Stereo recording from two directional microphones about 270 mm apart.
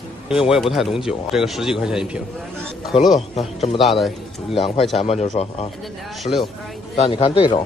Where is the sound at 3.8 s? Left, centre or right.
Centre.